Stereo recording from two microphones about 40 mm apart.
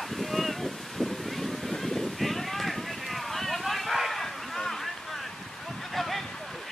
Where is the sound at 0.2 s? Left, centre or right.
Centre.